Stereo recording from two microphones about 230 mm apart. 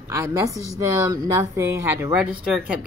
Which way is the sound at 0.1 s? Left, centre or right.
Centre.